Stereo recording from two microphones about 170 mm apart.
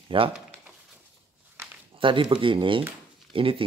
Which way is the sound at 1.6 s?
15° right (ahead or behind).